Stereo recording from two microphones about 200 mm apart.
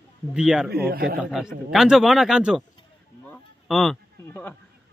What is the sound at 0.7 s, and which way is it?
Speech, 50° right (ahead or behind).